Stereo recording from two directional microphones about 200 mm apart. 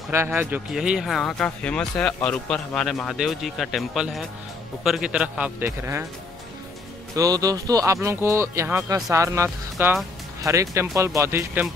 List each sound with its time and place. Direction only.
0.1 s speech: 10° right (ahead or behind)
7.2 s speech: 20° right (ahead or behind)